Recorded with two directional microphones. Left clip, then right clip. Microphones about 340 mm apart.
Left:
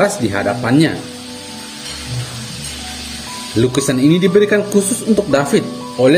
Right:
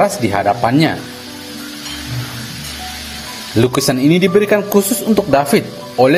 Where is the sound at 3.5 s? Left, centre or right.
Centre.